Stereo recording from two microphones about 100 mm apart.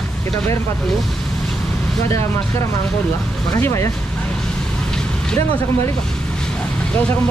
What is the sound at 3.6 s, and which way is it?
Speech, 30° left (ahead or behind).